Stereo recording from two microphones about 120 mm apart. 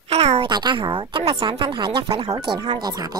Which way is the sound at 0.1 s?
55° right (ahead or behind).